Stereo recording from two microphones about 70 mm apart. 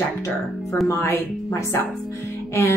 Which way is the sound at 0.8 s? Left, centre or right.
Left.